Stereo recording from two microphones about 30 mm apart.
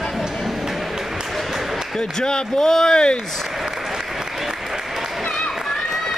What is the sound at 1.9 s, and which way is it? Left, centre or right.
Speech, left.